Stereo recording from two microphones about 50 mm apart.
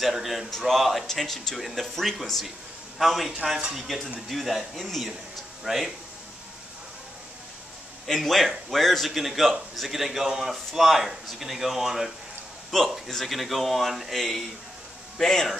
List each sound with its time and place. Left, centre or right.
0.0 s a man's voice: centre
8.1 s a man's voice: centre